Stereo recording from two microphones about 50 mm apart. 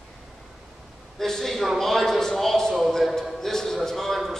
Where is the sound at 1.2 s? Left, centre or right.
Centre.